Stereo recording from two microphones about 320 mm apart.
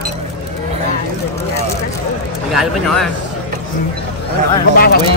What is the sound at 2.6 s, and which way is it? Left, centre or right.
Speech, centre.